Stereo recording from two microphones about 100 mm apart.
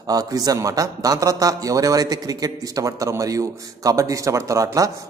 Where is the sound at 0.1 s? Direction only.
40° right (ahead or behind).